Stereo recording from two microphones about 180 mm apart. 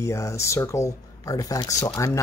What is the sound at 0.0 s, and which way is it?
Speech, 15° left (ahead or behind).